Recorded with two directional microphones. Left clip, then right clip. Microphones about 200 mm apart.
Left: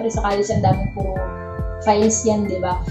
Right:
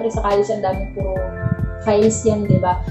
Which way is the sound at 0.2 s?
Centre (ahead or behind).